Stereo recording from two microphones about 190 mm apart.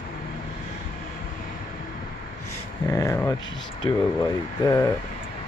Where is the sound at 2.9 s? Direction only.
15° left (ahead or behind).